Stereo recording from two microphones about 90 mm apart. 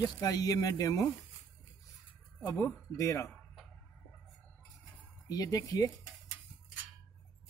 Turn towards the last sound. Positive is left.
turn(degrees=40)  # may be behind; listen again after turning